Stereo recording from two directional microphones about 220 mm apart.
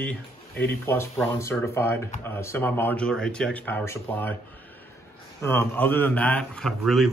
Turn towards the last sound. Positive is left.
turn(degrees=0)  # may be behind; listen again after turning